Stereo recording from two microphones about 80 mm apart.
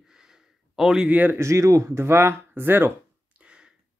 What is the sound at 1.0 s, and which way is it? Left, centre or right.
Speech, right.